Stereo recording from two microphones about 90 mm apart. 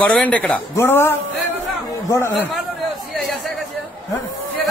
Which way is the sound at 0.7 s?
25° left (ahead or behind).